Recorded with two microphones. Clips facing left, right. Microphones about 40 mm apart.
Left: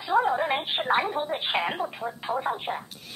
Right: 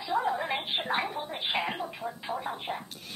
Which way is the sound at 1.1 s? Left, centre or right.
Left.